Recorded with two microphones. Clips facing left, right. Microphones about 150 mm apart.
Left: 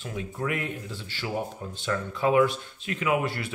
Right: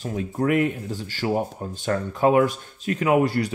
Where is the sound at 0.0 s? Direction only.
40° right (ahead or behind).